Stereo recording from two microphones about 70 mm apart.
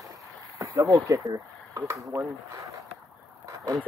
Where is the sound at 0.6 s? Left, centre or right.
Right.